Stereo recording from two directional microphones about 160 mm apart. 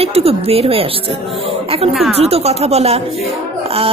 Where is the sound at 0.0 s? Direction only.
40° right (ahead or behind).